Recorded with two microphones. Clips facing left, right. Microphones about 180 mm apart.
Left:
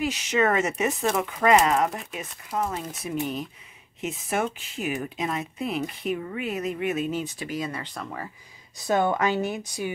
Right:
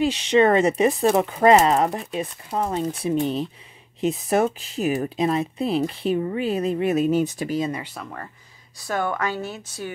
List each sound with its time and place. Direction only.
0.0 s speech: 30° right (ahead or behind)
7.5 s speech: 25° right (ahead or behind)
7.8 s speech: 5° right (ahead or behind)
8.7 s speech: 20° left (ahead or behind)